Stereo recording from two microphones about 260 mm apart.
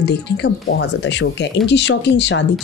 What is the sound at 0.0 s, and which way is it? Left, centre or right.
Speech, left.